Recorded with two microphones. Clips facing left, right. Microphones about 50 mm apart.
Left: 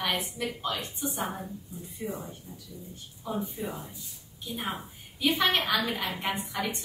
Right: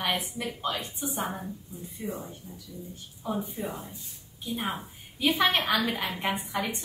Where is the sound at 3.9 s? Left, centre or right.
Right.